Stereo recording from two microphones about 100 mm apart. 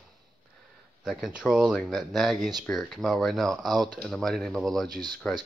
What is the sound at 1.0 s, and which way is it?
Speech, 5° right (ahead or behind).